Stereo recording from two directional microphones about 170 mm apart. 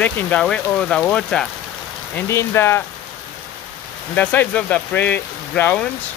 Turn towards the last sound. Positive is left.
turn(degrees=10)  # may be behind; listen again after turning